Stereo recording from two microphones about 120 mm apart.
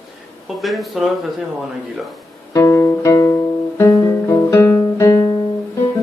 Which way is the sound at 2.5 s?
25° left (ahead or behind).